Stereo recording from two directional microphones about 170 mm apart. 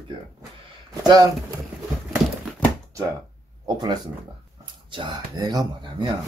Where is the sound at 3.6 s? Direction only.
25° right (ahead or behind).